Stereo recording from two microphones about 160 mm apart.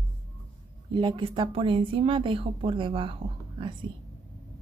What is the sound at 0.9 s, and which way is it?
A woman's voice, 30° right (ahead or behind).